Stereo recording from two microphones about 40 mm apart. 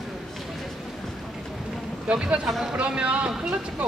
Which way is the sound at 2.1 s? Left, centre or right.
Right.